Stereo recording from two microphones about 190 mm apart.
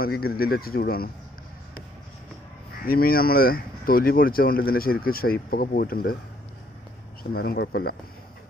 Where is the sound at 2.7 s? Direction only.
50° left (ahead or behind).